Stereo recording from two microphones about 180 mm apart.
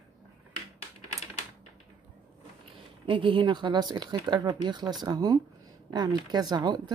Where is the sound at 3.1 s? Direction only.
30° right (ahead or behind).